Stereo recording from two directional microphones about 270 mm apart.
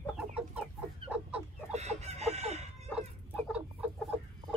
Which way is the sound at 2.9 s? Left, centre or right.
Centre.